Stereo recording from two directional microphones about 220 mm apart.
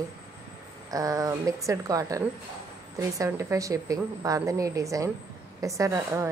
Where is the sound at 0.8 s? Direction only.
15° right (ahead or behind).